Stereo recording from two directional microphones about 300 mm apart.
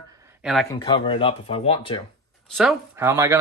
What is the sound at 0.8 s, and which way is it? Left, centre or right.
Speech, centre.